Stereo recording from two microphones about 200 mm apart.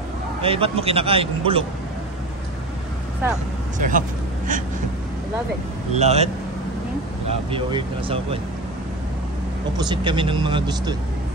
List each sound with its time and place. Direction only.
0.4 s a man's voice: 30° right (ahead or behind)
3.7 s a man's voice: 40° right (ahead or behind)
5.9 s a man's voice: 35° right (ahead or behind)
7.5 s a man's voice: 25° right (ahead or behind)
9.8 s a man's voice: 25° right (ahead or behind)